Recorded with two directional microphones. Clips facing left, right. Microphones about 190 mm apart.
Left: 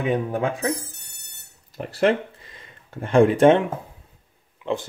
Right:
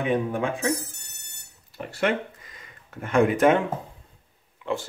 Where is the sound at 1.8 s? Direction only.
35° left (ahead or behind).